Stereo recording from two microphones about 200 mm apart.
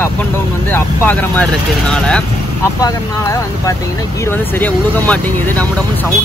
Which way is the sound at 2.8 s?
15° left (ahead or behind).